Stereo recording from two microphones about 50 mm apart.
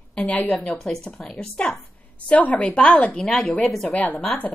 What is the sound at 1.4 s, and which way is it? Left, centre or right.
Speech, centre.